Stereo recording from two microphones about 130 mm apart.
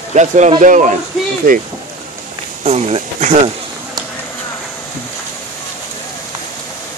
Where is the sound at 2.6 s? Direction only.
55° right (ahead or behind).